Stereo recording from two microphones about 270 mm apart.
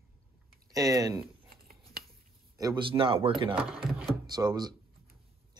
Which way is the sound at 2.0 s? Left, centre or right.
Right.